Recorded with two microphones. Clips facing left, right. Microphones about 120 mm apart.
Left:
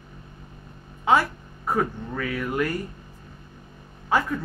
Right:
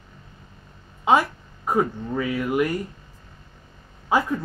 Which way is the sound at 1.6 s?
20° right (ahead or behind).